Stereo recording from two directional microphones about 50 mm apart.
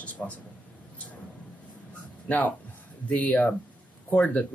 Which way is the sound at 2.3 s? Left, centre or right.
Left.